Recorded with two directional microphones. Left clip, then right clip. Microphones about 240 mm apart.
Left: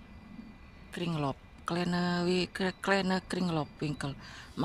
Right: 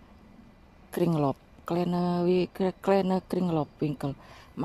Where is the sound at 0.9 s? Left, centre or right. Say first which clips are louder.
Right 8 dB; right.